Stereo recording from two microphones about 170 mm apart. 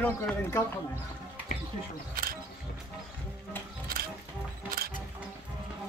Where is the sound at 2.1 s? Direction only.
60° right (ahead or behind).